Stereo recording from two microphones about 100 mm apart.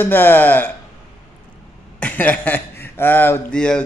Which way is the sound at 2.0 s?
15° left (ahead or behind).